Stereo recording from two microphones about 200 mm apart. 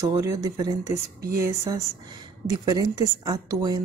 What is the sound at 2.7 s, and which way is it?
Speech, 20° right (ahead or behind).